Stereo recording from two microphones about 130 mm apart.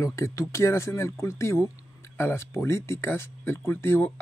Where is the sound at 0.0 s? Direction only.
25° left (ahead or behind).